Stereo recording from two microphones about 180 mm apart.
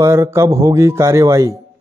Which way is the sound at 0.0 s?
15° right (ahead or behind).